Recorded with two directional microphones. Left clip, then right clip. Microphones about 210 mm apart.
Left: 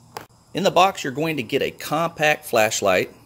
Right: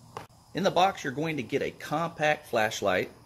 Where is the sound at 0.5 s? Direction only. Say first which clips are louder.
Left 7 dB; 25° left (ahead or behind).